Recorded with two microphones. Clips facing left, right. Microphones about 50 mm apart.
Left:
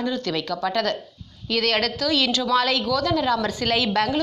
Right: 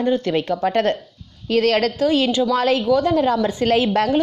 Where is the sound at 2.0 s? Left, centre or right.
Right.